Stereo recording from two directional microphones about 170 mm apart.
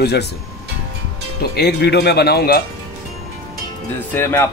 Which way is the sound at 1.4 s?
70° left (ahead or behind).